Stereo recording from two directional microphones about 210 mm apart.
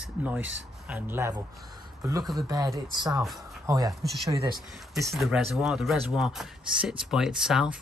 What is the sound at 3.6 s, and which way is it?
Speech, 15° right (ahead or behind).